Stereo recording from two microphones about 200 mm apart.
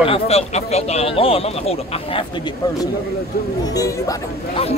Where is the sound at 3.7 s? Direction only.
15° left (ahead or behind).